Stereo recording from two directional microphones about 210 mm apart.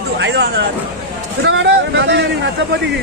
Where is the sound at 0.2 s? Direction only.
60° right (ahead or behind).